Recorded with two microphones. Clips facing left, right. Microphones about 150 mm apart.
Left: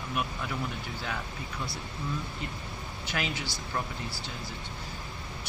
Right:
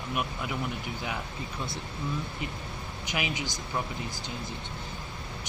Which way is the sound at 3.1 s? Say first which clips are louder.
Right 1 dB; 15° right (ahead or behind).